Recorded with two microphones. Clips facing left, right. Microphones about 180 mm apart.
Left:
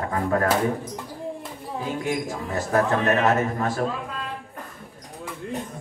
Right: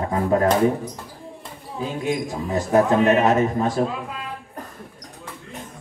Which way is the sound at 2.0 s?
20° right (ahead or behind).